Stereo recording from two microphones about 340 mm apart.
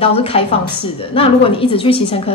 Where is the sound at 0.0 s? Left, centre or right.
Centre.